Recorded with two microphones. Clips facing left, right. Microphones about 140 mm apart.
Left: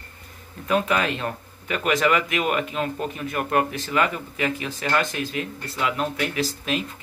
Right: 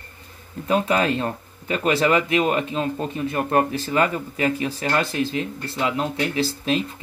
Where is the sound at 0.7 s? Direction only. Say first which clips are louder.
Right 2 dB; 30° right (ahead or behind).